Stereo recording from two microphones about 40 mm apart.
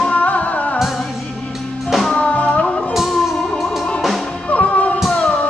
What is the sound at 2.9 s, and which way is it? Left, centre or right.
Music, centre.